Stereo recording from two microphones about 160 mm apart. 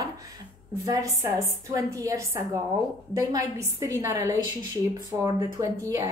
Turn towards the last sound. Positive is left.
turn(degrees=-20)  # may be behind; listen again after turning